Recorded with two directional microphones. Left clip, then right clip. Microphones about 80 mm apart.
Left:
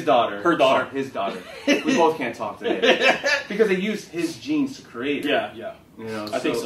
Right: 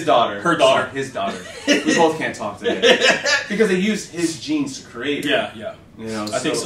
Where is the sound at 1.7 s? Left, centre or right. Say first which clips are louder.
Right 3 dB; right.